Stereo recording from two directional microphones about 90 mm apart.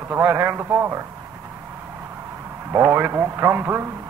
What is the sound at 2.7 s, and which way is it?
A man's voice, 30° right (ahead or behind).